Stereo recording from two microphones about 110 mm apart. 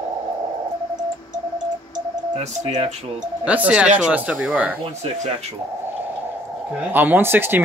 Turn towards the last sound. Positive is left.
turn(degrees=-20)  # may be behind; listen again after turning